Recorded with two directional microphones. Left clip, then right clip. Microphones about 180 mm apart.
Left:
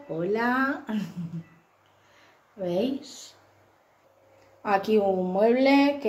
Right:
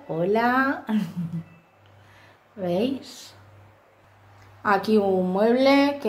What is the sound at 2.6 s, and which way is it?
Speech, 20° right (ahead or behind).